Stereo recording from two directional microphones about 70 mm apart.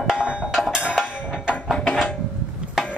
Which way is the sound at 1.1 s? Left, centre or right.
Left.